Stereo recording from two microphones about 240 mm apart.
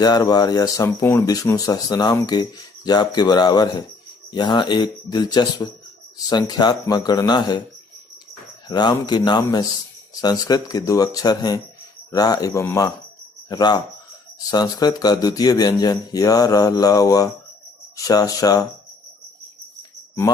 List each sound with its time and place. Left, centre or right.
0.0 s speech: centre
8.6 s speech: centre